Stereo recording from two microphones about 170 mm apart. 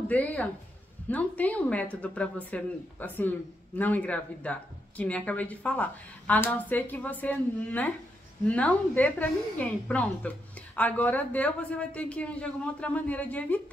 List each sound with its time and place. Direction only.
0.1 s speech: 10° left (ahead or behind)